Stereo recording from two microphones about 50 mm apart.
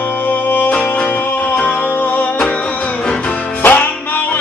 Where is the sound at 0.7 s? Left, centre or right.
Left.